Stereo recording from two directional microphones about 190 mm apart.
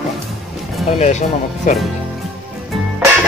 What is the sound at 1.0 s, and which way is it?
Speech, 40° left (ahead or behind).